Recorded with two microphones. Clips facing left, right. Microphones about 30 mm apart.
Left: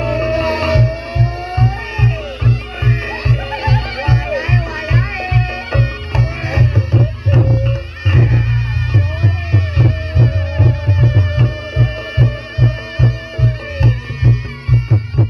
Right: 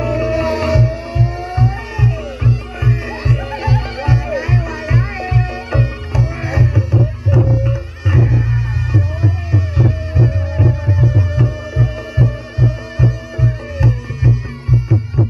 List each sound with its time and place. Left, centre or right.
0.0 s music: left